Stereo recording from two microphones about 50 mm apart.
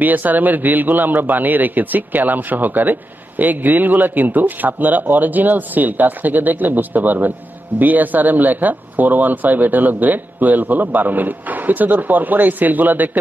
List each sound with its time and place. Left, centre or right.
0.0 s a man's voice: right